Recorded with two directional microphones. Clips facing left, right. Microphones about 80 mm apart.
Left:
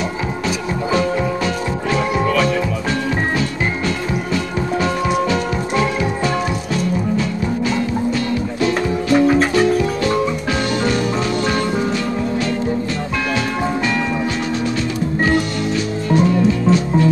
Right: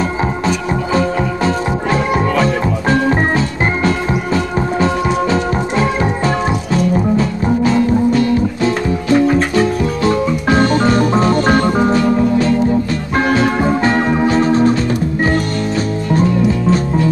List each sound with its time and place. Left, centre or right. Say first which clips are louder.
2.9 s music: right 8 dB; right
7.2 s music: right 5 dB; right
10.5 s music: right 9 dB; right